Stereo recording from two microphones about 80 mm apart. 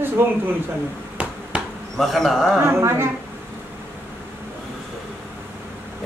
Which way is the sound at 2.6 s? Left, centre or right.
Right.